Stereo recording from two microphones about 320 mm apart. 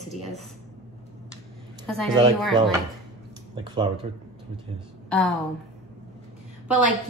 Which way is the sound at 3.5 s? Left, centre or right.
Centre.